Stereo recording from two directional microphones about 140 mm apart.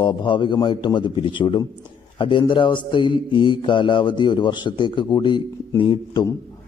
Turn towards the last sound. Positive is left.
turn(degrees=35)  # may be behind; listen again after turning